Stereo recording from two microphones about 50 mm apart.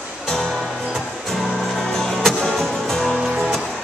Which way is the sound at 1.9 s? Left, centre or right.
Centre.